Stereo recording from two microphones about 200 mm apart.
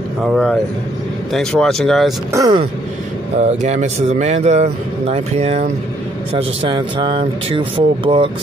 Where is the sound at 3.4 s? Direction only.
35° right (ahead or behind).